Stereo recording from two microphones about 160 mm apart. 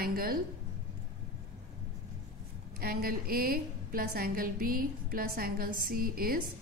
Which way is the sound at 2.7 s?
65° right (ahead or behind).